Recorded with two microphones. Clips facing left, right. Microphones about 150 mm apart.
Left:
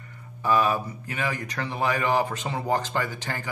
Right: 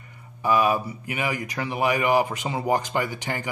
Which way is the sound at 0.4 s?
15° right (ahead or behind).